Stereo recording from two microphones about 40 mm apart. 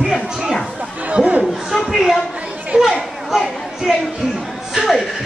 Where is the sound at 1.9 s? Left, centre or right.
Centre.